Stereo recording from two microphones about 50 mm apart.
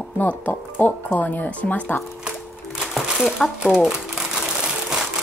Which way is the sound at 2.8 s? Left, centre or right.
Centre.